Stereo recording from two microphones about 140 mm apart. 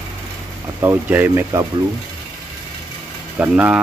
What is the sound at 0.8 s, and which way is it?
Speech, 15° right (ahead or behind).